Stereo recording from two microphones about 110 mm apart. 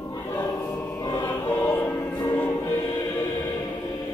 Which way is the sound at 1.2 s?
25° left (ahead or behind).